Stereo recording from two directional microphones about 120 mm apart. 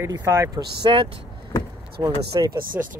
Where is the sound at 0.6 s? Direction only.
40° right (ahead or behind).